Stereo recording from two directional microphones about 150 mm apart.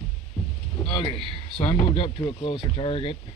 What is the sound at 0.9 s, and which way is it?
Speech, 35° left (ahead or behind).